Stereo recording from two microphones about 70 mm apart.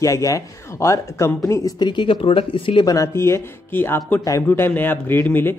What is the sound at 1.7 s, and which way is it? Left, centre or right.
Speech, left.